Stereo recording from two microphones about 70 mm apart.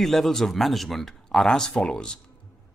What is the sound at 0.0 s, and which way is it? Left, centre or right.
Speech, centre.